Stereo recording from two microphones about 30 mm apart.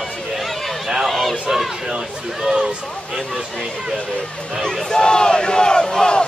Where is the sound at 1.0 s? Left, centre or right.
Centre.